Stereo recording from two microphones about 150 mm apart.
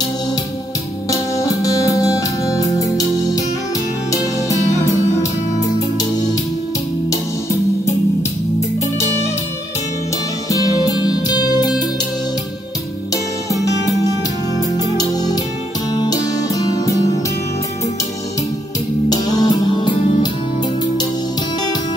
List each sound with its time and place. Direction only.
1.1 s music: 20° left (ahead or behind)
4.1 s music: 20° left (ahead or behind)
7.8 s music: 20° left (ahead or behind)
10.5 s music: 25° left (ahead or behind)
13.1 s music: 20° left (ahead or behind)
19.0 s music: 25° left (ahead or behind)